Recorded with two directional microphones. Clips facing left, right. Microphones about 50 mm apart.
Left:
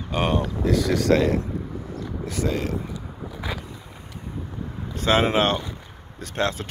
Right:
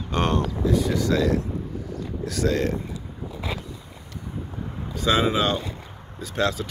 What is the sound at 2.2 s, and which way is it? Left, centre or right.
Speech, left.